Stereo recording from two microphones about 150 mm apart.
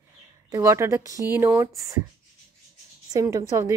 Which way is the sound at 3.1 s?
20° right (ahead or behind).